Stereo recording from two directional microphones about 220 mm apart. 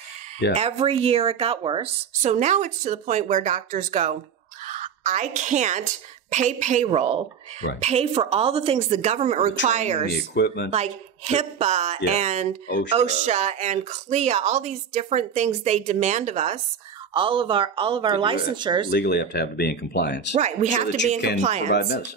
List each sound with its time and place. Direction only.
0.6 s a woman's voice: 25° right (ahead or behind)
10.1 s speech: 50° left (ahead or behind)
10.7 s a woman's voice: 30° right (ahead or behind)
18.9 s speech: 50° left (ahead or behind)
20.3 s speech: 35° right (ahead or behind)
21.7 s speech: 50° left (ahead or behind)